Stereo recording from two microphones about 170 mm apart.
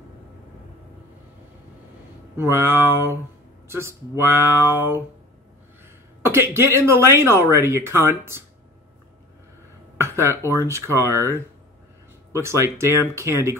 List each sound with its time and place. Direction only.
2.3 s speech: 15° right (ahead or behind)
6.2 s speech: 15° right (ahead or behind)
9.9 s a sound: 15° right (ahead or behind)
10.4 s speech: 15° right (ahead or behind)